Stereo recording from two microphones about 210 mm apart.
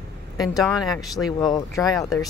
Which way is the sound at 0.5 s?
Centre (ahead or behind).